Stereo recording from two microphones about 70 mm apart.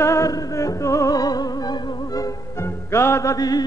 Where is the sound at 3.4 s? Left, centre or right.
Left.